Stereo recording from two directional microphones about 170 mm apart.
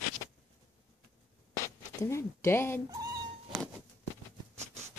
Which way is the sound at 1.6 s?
15° left (ahead or behind).